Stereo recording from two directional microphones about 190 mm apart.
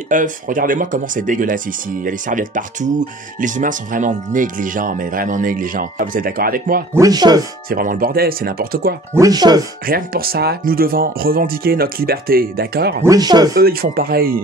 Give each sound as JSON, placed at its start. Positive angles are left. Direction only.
{"t": 0.1, "sound": "speech", "side_deg": -45}
{"t": 6.9, "sound": "speech", "side_deg": -20}
{"t": 7.7, "sound": "speech", "side_deg": -45}
{"t": 9.1, "sound": "speech", "side_deg": -20}
{"t": 9.8, "sound": "speech", "side_deg": -50}
{"t": 13.0, "sound": "speech", "side_deg": -20}
{"t": 13.6, "sound": "speech", "side_deg": -50}